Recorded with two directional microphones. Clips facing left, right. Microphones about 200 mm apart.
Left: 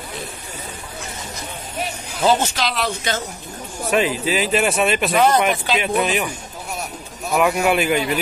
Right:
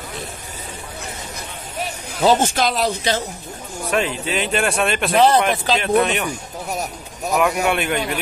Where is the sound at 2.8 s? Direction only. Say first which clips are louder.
Right 3 dB; 35° right (ahead or behind).